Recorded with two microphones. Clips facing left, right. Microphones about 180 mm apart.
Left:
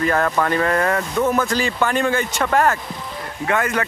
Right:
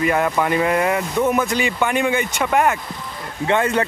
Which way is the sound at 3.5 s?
25° right (ahead or behind).